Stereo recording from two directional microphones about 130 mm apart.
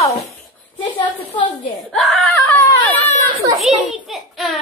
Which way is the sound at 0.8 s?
35° left (ahead or behind).